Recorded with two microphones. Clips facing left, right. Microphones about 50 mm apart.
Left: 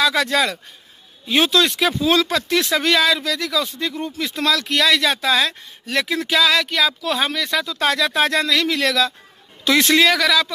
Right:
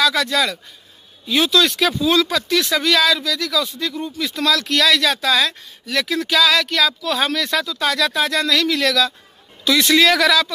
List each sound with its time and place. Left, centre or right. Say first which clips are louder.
0.0 s speech: even; left
1.6 s speech: right 1 dB; centre
2.0 s speech: even; left
4.5 s speech: right 1 dB; centre
6.9 s speech: even; left
7.2 s speech: right 3 dB; centre
7.6 s speech: even; left
8.4 s speech: right 1 dB; centre
9.7 s speech: left 1 dB; left
10.0 s speech: right 2 dB; centre